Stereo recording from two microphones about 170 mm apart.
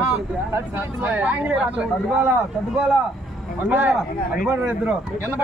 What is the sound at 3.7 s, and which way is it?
Speech, 10° right (ahead or behind).